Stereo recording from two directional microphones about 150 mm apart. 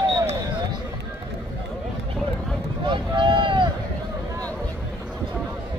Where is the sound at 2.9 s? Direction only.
30° right (ahead or behind).